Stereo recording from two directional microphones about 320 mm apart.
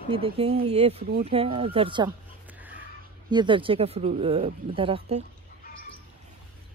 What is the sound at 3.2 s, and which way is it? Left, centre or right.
Speech, centre.